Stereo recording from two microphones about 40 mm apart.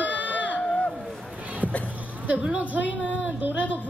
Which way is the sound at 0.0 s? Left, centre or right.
Right.